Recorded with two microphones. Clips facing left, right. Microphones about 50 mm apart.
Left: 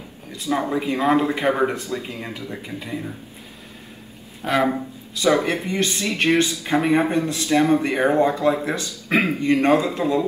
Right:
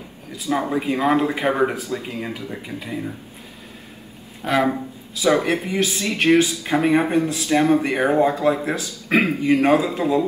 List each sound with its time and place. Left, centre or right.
0.7 s a man's voice: centre
2.0 s speech: right
2.5 s a man's voice: centre
4.4 s a man's voice: centre
7.4 s speech: right
8.0 s a man's voice: centre